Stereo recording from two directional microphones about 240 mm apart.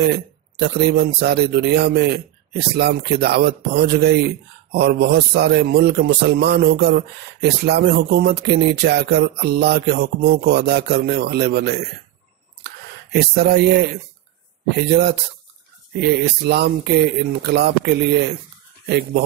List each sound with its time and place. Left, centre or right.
0.0 s a man's voice: right
12.6 s a sound: right
14.9 s a man's voice: right